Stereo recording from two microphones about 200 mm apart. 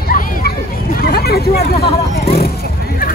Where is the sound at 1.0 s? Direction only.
50° left (ahead or behind).